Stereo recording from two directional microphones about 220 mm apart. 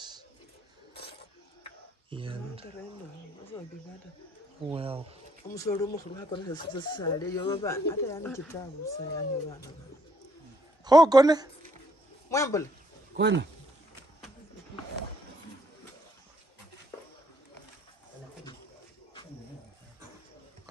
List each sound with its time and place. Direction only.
2.0 s speech: 25° right (ahead or behind)
4.6 s speech: 25° right (ahead or behind)
5.5 s speech: 15° left (ahead or behind)
10.8 s a man's voice: 20° right (ahead or behind)
12.3 s speech: 15° left (ahead or behind)
13.1 s speech: 50° right (ahead or behind)